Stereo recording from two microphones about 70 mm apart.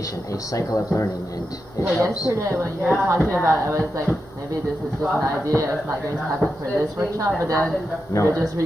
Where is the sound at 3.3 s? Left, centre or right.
Right.